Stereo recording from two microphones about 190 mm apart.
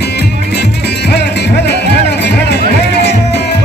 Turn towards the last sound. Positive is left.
turn(degrees=60)  # may be behind; listen again after turning